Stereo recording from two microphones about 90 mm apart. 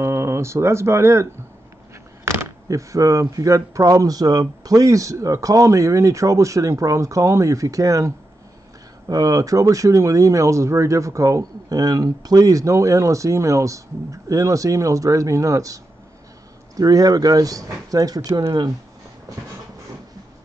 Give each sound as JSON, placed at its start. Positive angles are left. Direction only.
{"t": 0.0, "sound": "speech", "side_deg": -30}